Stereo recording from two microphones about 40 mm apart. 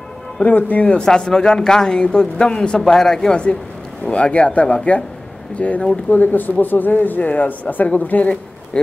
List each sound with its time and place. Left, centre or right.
0.4 s speech: left
0.8 s speech: left
4.0 s speech: left
6.0 s speech: left
8.7 s speech: left